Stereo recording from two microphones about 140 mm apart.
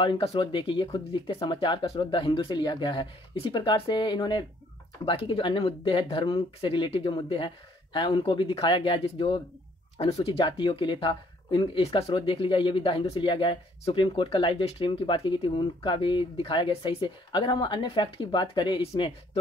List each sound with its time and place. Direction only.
0.0 s speech: 40° left (ahead or behind)
9.9 s speech: 50° left (ahead or behind)